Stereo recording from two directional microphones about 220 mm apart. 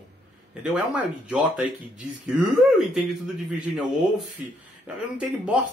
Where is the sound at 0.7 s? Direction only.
5° right (ahead or behind).